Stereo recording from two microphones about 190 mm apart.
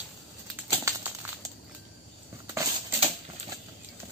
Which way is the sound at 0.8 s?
15° right (ahead or behind).